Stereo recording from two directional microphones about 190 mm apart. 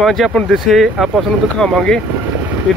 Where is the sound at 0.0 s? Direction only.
Centre (ahead or behind).